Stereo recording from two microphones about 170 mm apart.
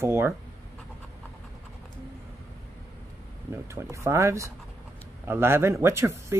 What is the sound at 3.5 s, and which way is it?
Speech, 15° right (ahead or behind).